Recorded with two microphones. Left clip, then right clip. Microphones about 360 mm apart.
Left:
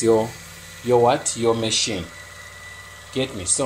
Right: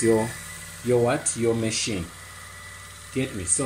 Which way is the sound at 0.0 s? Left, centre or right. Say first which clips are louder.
Left 4 dB; left.